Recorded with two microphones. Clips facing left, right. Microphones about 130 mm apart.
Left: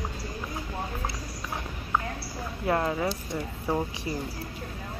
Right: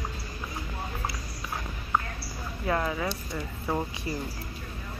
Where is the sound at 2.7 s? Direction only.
25° left (ahead or behind).